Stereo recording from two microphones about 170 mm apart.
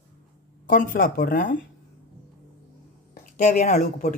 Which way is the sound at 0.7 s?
55° left (ahead or behind).